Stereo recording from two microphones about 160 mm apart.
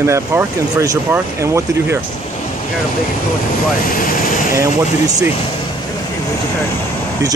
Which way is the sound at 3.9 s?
60° left (ahead or behind).